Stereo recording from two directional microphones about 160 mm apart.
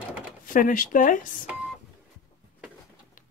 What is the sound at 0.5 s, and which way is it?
Speech, 55° left (ahead or behind).